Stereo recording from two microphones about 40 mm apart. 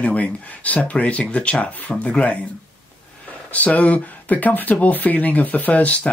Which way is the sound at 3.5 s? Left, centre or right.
Left.